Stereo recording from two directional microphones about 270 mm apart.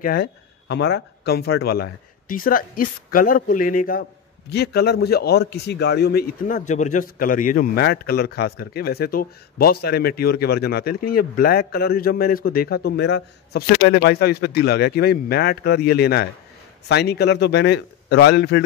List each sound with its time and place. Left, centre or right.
0.0 s a man's voice: left